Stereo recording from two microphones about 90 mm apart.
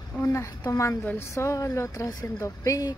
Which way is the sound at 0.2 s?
30° left (ahead or behind).